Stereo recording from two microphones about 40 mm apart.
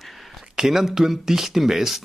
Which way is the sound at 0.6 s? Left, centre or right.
Centre.